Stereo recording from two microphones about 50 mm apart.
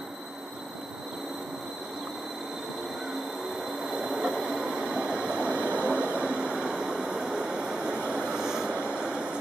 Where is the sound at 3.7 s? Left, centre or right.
Centre.